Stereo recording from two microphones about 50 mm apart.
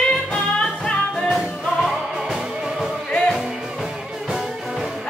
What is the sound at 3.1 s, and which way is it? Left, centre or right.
Music, centre.